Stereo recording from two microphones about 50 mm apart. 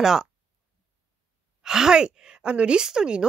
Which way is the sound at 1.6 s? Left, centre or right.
Centre.